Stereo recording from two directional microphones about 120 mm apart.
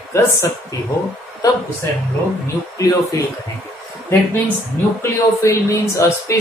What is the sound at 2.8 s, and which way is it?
Speech, 25° left (ahead or behind).